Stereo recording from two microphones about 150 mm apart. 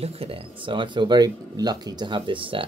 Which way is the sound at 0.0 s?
40° right (ahead or behind).